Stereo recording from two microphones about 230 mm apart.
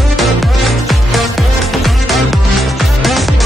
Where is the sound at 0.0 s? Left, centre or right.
Centre.